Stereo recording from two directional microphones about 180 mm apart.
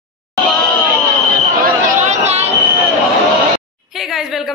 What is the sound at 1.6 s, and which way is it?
Chatter, 45° right (ahead or behind).